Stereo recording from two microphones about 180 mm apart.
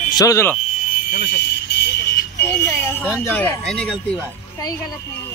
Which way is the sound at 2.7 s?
10° left (ahead or behind).